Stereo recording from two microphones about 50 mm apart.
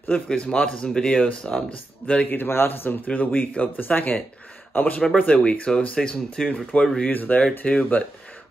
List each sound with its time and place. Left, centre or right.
0.3 s speech: left
2.2 s a man's voice: left
3.1 s speech: left
5.9 s speech: centre
7.1 s speech: left
7.6 s speech: left